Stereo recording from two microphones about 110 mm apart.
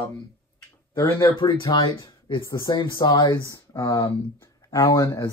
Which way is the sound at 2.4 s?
30° left (ahead or behind).